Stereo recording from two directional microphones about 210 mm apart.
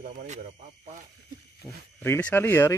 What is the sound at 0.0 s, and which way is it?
Speech, 35° right (ahead or behind).